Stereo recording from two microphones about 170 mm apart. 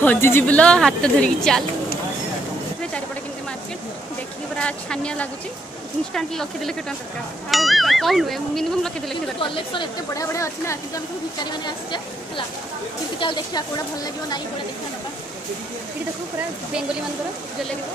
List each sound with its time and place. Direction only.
0.0 s speech: 10° left (ahead or behind)
4.6 s speech: 5° left (ahead or behind)
9.4 s a woman's voice: 30° left (ahead or behind)
13.2 s a woman's voice: 25° left (ahead or behind)